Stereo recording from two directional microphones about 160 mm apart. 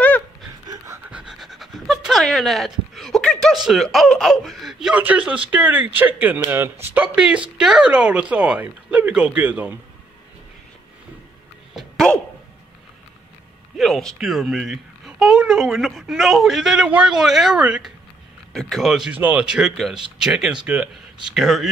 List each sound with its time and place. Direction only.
1.1 s pant: 5° right (ahead or behind)
5.5 s speech: 10° right (ahead or behind)
11.7 s a sound: 5° left (ahead or behind)
13.7 s speech: centre (ahead or behind)